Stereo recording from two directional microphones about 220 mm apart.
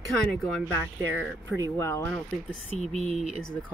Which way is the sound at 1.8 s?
10° left (ahead or behind).